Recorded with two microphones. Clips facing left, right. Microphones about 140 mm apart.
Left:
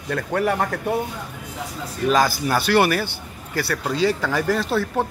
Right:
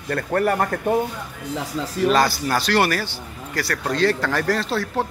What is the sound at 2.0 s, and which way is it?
A man's voice, centre (ahead or behind).